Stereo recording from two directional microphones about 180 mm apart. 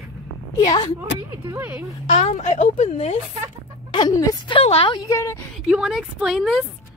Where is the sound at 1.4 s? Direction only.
10° right (ahead or behind).